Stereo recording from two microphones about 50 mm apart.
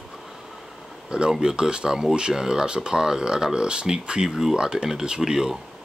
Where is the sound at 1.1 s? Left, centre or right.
Centre.